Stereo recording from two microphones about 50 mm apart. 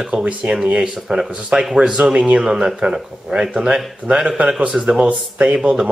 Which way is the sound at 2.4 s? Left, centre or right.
Centre.